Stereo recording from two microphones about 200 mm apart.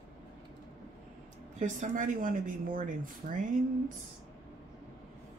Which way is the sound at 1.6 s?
40° right (ahead or behind).